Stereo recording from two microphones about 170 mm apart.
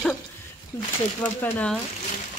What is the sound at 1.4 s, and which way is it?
Speech, 5° left (ahead or behind).